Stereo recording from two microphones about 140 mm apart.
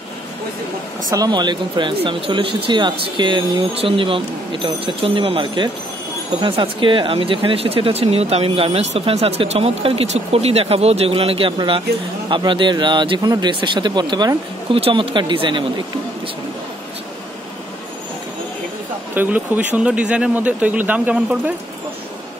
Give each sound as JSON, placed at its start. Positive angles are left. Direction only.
{"t": 1.1, "sound": "speech", "side_deg": -30}
{"t": 19.1, "sound": "a man's voice", "side_deg": -10}